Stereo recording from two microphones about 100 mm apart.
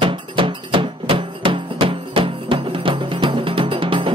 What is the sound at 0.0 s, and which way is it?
Music, 55° right (ahead or behind).